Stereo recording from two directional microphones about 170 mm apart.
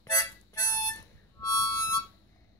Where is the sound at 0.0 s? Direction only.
20° left (ahead or behind).